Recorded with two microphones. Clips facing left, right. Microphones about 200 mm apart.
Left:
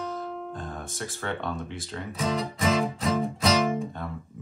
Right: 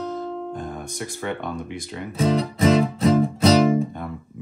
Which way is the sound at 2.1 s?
30° right (ahead or behind).